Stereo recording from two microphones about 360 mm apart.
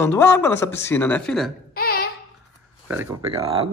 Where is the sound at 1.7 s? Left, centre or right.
Left.